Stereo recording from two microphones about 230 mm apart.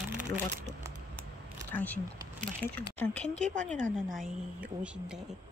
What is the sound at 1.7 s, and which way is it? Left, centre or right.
A woman's voice, centre.